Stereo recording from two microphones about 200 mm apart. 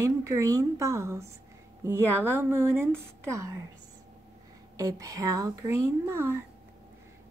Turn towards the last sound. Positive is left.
turn(degrees=-15)  # may be behind; listen again after turning